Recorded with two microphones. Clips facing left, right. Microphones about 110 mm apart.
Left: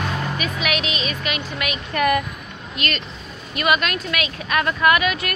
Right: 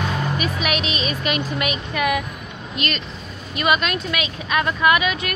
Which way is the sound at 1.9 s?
10° right (ahead or behind).